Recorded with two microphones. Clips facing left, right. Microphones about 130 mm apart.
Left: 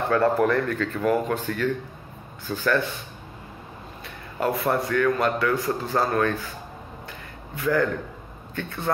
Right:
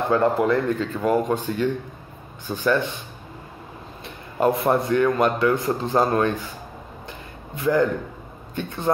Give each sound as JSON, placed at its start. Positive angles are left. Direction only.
{"t": 0.1, "sound": "a man's voice", "side_deg": -15}
{"t": 4.0, "sound": "a man's voice", "side_deg": -20}
{"t": 7.1, "sound": "a sound", "side_deg": -20}
{"t": 8.5, "sound": "a man's voice", "side_deg": -20}